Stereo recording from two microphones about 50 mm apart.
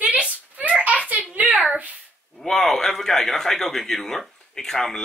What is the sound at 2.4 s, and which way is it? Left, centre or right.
A man's voice, centre.